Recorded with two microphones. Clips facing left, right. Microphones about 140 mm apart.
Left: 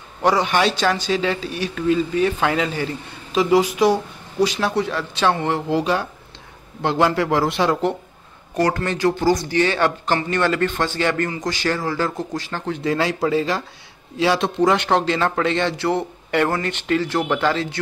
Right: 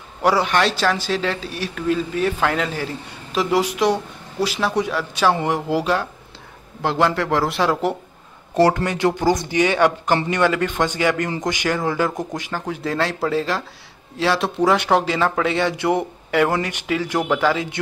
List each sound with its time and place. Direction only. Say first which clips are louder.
0.2 s speech: even; 5° right (ahead or behind)
8.8 s speech: even; 20° right (ahead or behind)
12.8 s speech: left 2 dB; centre (ahead or behind); by 16.1 s 15° right (ahead or behind)
16.3 s speech: right 1 dB; 5° right (ahead or behind)